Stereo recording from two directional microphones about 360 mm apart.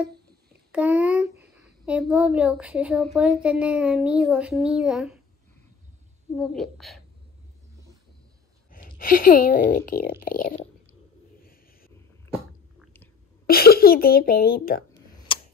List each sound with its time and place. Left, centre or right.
0.7 s a child's voice: centre
6.3 s a woman's voice: centre
8.7 s a woman's voice: left
12.7 s chewing: centre
13.5 s a woman's voice: left
15.3 s tick-tock: centre